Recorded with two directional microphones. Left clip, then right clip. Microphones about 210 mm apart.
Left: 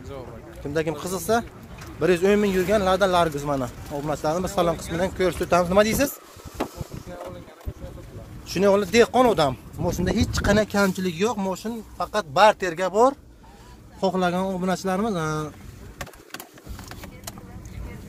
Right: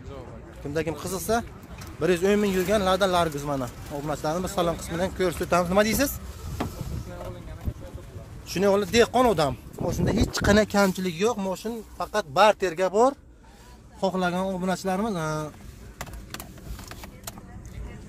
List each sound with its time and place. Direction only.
0.7 s a man's voice: centre (ahead or behind)
6.6 s vehicle: 45° left (ahead or behind)
8.5 s a man's voice: 5° right (ahead or behind)
10.3 s a man's voice: 25° right (ahead or behind); by 15.5 s 5° right (ahead or behind)